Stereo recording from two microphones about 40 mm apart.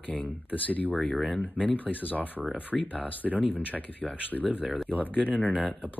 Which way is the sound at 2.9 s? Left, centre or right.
Left.